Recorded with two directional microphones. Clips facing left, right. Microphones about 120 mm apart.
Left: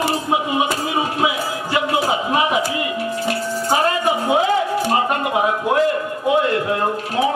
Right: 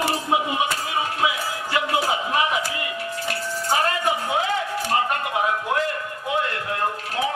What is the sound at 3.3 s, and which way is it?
Music, 20° left (ahead or behind).